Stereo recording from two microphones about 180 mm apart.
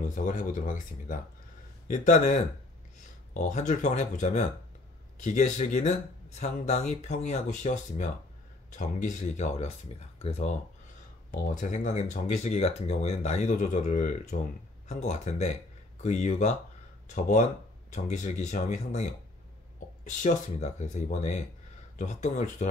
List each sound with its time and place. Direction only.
0.0 s speech: 45° left (ahead or behind)
11.3 s speech: 45° left (ahead or behind)
20.1 s speech: 40° left (ahead or behind)